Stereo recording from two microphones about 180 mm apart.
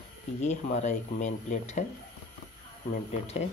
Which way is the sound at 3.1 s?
35° left (ahead or behind).